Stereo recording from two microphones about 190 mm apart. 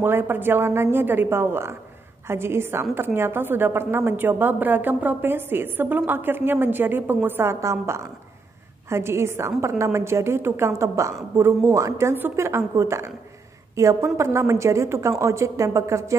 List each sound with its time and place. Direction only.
0.0 s a woman's voice: 10° right (ahead or behind)